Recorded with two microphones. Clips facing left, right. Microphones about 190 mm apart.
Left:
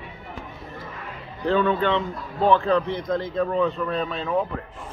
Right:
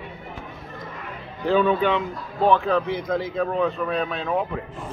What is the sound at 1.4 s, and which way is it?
Speech, 5° right (ahead or behind).